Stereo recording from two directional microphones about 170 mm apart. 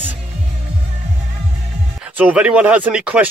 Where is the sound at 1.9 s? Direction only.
10° right (ahead or behind).